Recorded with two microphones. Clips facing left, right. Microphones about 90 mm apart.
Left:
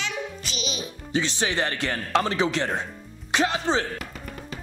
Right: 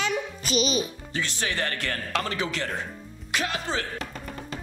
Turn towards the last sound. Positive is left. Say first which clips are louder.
# left 6 dB
turn(degrees=25)  # may be behind; listen again after turning